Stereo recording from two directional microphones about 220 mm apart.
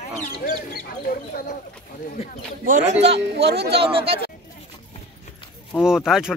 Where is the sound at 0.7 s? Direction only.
40° left (ahead or behind).